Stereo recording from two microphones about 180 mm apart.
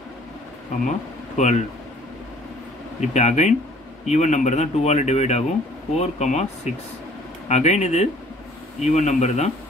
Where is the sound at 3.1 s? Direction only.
40° left (ahead or behind).